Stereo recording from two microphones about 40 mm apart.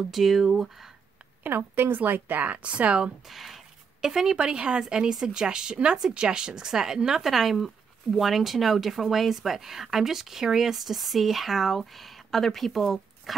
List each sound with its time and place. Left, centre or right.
0.1 s speech: centre
1.4 s a woman's voice: right
2.0 s speech: right
2.4 s speech: right
3.3 s speech: centre